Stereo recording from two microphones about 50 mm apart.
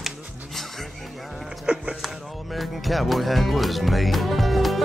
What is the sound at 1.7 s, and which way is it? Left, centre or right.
Speech, centre.